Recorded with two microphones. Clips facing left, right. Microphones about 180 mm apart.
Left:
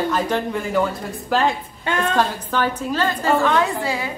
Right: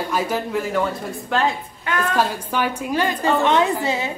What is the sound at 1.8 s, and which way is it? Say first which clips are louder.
Speech: left 2 dB; 25° left (ahead or behind).